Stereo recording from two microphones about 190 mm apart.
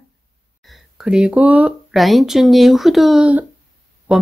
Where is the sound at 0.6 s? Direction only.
Centre (ahead or behind).